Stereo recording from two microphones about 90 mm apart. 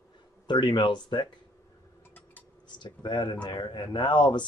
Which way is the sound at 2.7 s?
55° left (ahead or behind).